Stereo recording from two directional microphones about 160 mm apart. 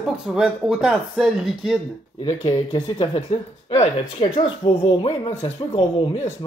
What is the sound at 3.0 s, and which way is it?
Speech, 35° left (ahead or behind).